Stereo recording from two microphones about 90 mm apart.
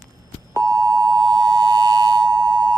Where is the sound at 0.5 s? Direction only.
40° right (ahead or behind).